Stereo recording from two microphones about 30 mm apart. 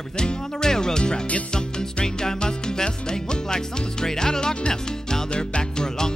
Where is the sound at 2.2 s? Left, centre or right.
Left.